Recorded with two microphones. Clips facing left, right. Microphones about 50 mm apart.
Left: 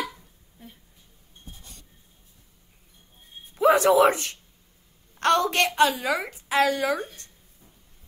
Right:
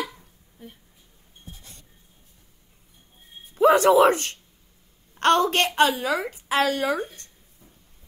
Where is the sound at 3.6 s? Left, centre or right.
Right.